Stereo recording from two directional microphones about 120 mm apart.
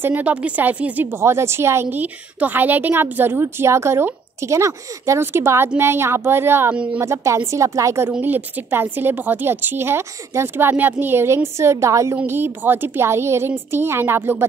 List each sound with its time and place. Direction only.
0.0 s a woman's voice: 15° right (ahead or behind)